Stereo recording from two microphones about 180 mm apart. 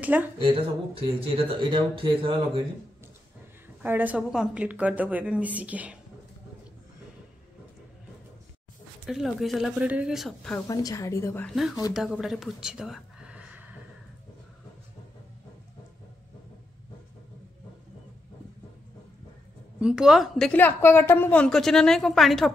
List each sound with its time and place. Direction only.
0.0 s a woman's voice: 10° right (ahead or behind)
0.4 s speech: 30° right (ahead or behind)
3.8 s a woman's voice: 10° right (ahead or behind)
9.0 s a woman's voice: centre (ahead or behind)
10.7 s a woman's voice: 20° left (ahead or behind)
11.9 s speech: 5° right (ahead or behind)
19.8 s a woman's voice: 5° right (ahead or behind)